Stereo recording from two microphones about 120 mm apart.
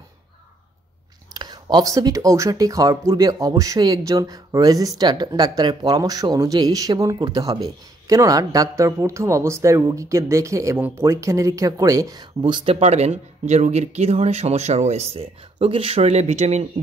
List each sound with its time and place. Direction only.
1.3 s speech: 35° right (ahead or behind); by 16.6 s 65° right (ahead or behind)